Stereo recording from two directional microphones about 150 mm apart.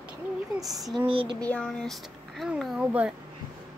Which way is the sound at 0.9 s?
35° right (ahead or behind).